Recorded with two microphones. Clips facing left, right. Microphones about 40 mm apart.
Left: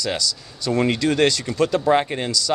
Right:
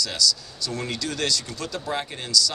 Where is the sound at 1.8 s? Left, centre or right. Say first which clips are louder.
Left 11 dB; left.